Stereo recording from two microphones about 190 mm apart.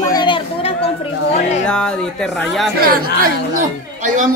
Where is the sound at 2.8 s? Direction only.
50° right (ahead or behind).